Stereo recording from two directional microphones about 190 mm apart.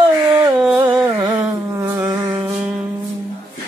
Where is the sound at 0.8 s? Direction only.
25° right (ahead or behind).